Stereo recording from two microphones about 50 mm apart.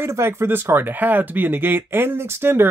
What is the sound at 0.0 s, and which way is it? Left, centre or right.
Speech, right.